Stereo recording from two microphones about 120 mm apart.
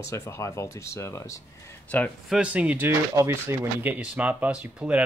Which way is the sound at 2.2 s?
10° right (ahead or behind).